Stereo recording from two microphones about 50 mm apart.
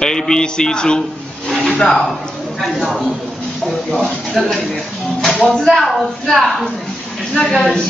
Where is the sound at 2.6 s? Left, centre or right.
Centre.